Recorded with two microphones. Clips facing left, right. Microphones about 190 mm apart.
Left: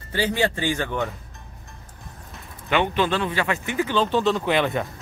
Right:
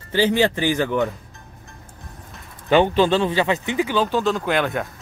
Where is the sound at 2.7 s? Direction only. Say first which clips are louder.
Right 6 dB; 35° right (ahead or behind).